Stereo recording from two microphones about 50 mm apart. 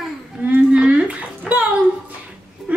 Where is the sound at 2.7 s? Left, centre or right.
Right.